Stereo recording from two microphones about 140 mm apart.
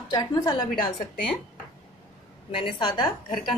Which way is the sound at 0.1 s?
25° left (ahead or behind).